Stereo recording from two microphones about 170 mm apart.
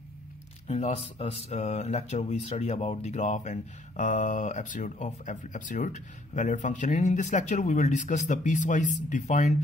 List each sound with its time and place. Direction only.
0.7 s speech: 40° left (ahead or behind)